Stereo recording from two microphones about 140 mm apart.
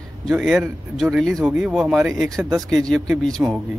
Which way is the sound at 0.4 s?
Centre (ahead or behind).